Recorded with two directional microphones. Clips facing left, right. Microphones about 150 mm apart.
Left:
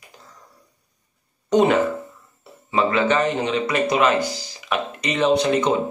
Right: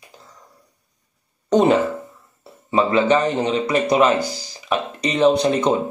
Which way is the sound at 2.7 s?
35° right (ahead or behind).